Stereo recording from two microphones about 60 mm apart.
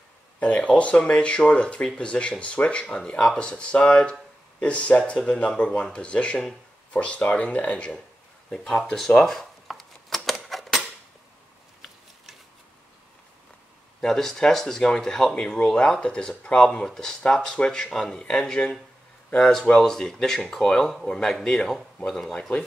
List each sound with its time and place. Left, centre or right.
0.4 s speech: left
8.5 s speech: centre
9.2 s typewriter: centre
14.0 s speech: centre